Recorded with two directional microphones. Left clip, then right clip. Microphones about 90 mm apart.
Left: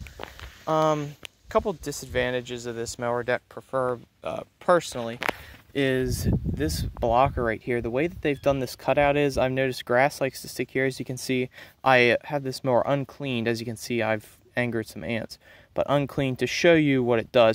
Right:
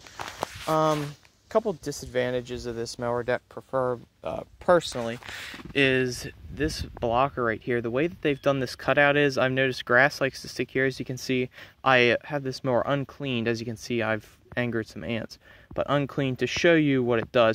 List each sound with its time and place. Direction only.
0.7 s speech: 10° left (ahead or behind)
1.5 s speech: centre (ahead or behind)
3.7 s speech: 25° right (ahead or behind)
5.7 s speech: 50° left (ahead or behind)
7.6 s speech: 35° left (ahead or behind); by 17.5 s 60° left (ahead or behind)